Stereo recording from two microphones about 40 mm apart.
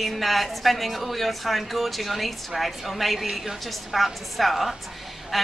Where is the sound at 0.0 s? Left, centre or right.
Centre.